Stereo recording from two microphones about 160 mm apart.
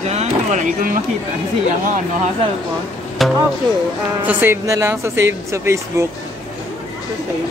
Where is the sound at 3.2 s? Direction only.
Centre (ahead or behind).